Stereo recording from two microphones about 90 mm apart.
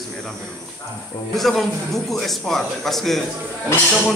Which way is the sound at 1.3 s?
Centre (ahead or behind).